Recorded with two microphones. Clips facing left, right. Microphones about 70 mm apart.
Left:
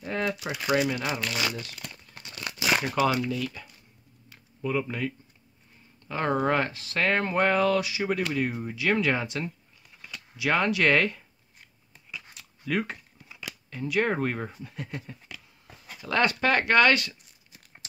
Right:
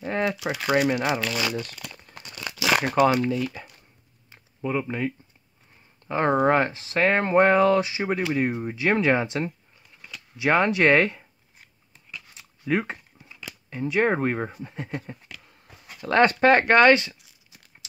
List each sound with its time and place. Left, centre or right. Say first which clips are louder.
0.0 s a sound: right 4 dB; right
0.7 s speech: right 3 dB; right
1.5 s crumpling: right 6 dB; right
2.8 s speech: right 8 dB; right
3.3 s speech: right 5 dB; right
4.3 s a sound: right 2 dB; right
6.0 s speech: right 5 dB; right
12.4 s a sound: right 4 dB; right
13.7 s speech: right 4 dB; right